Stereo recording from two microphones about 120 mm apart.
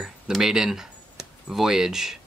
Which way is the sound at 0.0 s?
5° right (ahead or behind).